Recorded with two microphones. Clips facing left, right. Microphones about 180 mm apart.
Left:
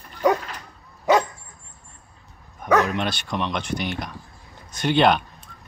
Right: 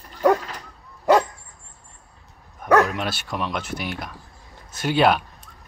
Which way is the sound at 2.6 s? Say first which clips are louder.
Right 2 dB; 5° right (ahead or behind).